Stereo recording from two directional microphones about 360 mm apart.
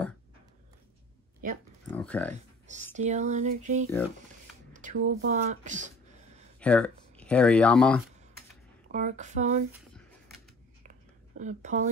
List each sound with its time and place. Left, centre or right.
1.9 s speech: centre
3.0 s speech: centre
5.0 s speech: centre
6.6 s speech: centre
8.9 s speech: centre
9.7 s a sound: centre
10.8 s a sound: centre